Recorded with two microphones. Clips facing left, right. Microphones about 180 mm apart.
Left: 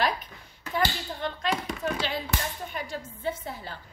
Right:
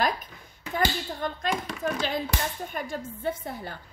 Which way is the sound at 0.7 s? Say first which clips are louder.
Right 1 dB; 45° right (ahead or behind).